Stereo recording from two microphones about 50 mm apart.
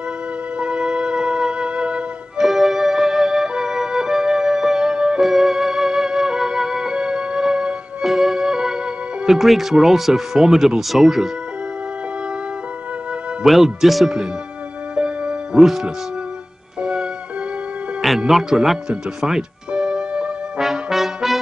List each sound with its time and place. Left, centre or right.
0.6 s music: centre
2.4 s music: centre
9.3 s speech: centre
13.5 s speech: centre
15.0 s music: centre
15.6 s speech: centre
18.3 s speech: centre
19.7 s music: centre
20.6 s brass instrument: centre